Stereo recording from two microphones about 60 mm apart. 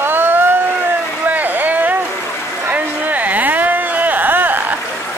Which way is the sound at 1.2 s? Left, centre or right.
Right.